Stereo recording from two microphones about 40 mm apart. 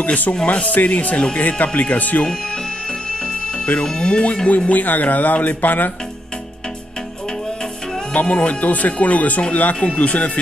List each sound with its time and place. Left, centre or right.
0.0 s speech: left
1.7 s speech: left
3.8 s speech: left
4.6 s speech: left
8.1 s speech: left